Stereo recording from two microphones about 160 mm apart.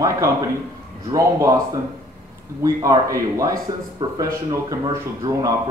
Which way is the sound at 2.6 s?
20° right (ahead or behind).